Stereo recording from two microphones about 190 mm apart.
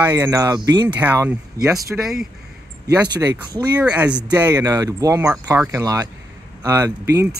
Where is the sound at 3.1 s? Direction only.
20° right (ahead or behind).